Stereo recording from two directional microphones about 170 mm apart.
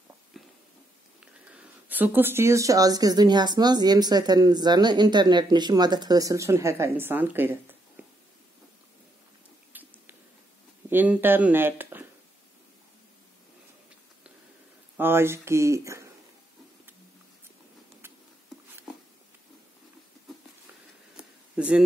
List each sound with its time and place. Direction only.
0.3 s a sound: centre (ahead or behind)
1.2 s speech: 5° right (ahead or behind)
9.7 s squish: 10° right (ahead or behind)
10.9 s speech: 10° right (ahead or behind)
15.0 s speech: 15° right (ahead or behind)
21.2 s a sound: 5° right (ahead or behind)